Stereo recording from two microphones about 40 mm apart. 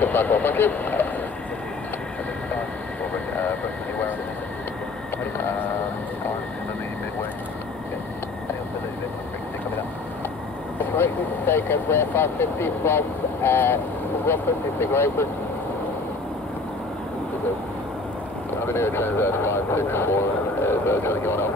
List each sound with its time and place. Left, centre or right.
0.0 s speech: left
10.8 s speech: left
18.7 s speech: left